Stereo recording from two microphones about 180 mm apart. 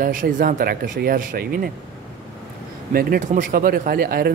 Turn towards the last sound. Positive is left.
turn(degrees=-55)  # may be behind; listen again after turning